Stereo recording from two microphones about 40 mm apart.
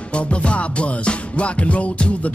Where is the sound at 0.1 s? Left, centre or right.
Left.